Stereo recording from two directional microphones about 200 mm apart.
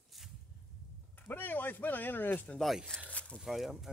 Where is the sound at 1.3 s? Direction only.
10° left (ahead or behind).